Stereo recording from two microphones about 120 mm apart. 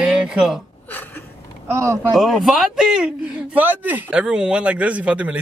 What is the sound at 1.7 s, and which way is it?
Speech, 25° right (ahead or behind).